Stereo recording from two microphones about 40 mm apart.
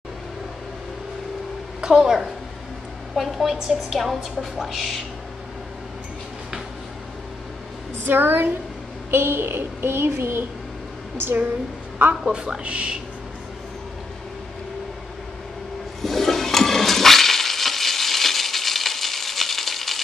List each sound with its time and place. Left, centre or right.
1.8 s a woman's voice: centre
3.2 s a woman's voice: centre
8.1 s a woman's voice: right
9.1 s a child's voice: right
12.3 s a woman's voice: right
16.0 s toilet flush: centre